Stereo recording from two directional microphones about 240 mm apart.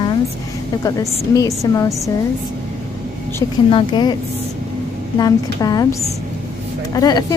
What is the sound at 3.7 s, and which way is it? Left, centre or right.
Speech, centre.